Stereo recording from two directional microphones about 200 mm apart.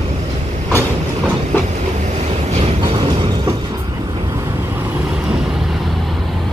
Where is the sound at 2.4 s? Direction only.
35° right (ahead or behind).